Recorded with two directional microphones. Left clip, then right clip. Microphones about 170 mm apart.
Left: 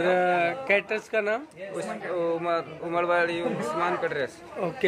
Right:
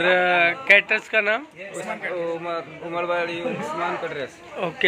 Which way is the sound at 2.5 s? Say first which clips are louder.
Left 1 dB; 20° left (ahead or behind).